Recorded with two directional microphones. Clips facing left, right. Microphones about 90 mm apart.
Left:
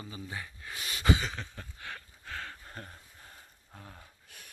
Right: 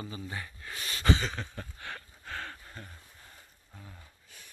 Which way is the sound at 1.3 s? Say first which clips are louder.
Right 3 dB; centre (ahead or behind).